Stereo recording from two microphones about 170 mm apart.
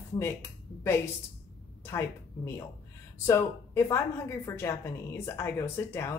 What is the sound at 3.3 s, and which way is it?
Speech, 20° left (ahead or behind).